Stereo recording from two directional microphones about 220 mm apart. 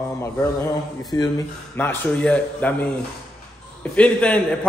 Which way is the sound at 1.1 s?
15° left (ahead or behind).